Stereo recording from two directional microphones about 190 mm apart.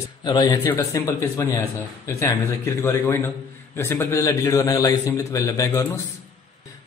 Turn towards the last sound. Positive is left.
turn(degrees=15)  # may be behind; listen again after turning